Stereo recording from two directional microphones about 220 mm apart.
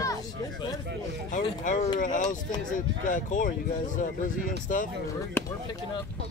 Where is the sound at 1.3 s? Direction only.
35° left (ahead or behind).